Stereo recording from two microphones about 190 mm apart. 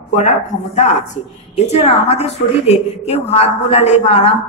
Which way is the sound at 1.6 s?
35° left (ahead or behind).